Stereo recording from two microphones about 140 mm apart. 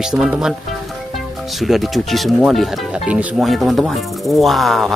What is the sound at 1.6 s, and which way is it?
Speech, centre (ahead or behind).